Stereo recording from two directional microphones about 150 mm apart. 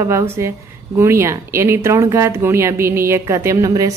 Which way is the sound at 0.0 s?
15° right (ahead or behind).